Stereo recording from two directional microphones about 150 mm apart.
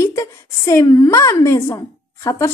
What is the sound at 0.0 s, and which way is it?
A woman's voice, 20° left (ahead or behind).